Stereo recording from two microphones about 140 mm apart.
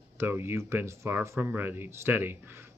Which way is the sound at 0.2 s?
15° right (ahead or behind).